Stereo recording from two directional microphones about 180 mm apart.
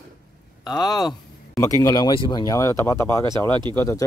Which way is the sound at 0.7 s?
Centre (ahead or behind).